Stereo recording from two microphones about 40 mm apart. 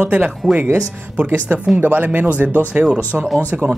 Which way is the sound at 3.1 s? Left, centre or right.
Right.